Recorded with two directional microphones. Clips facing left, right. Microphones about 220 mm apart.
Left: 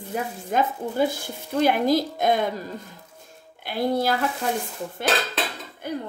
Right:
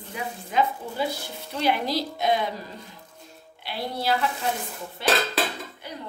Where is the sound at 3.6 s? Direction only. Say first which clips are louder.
Left 5 dB; 50° left (ahead or behind).